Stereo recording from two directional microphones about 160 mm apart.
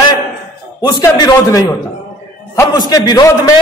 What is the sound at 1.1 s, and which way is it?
A man's voice, 20° left (ahead or behind).